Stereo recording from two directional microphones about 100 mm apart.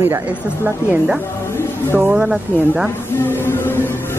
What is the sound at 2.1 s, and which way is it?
Speech, 10° right (ahead or behind).